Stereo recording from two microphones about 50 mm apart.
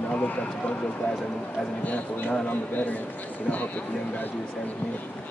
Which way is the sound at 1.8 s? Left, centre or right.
Left.